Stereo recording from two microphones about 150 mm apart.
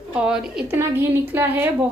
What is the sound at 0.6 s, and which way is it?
A woman's voice, 15° right (ahead or behind).